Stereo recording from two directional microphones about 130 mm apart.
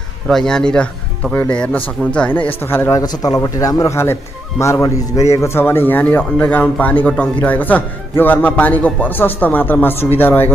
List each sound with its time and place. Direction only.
0.3 s speech: 5° left (ahead or behind)
3.0 s speech: 30° left (ahead or behind)